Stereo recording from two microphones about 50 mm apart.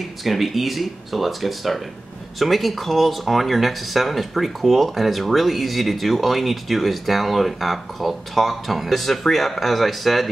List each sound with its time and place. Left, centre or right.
0.2 s speech: centre